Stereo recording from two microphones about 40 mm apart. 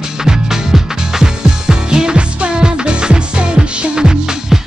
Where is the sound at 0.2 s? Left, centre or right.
Centre.